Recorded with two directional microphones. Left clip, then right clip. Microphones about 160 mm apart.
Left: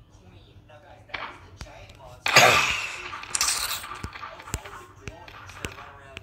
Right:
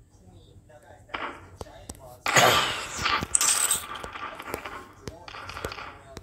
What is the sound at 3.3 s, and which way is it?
Coin, 60° left (ahead or behind).